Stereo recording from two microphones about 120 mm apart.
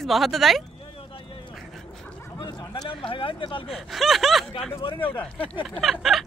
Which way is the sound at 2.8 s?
45° left (ahead or behind).